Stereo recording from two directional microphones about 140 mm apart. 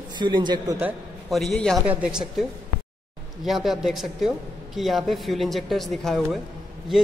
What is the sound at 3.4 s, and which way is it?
A woman's voice, centre (ahead or behind).